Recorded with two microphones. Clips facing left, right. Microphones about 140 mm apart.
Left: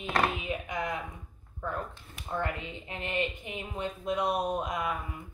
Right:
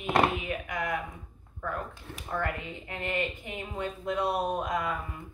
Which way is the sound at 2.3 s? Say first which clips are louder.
Right 1 dB; 20° left (ahead or behind).